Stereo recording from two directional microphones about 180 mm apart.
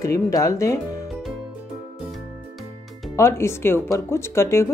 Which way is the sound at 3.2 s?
15° left (ahead or behind).